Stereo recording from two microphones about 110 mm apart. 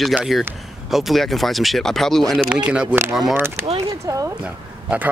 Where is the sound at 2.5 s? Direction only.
10° right (ahead or behind).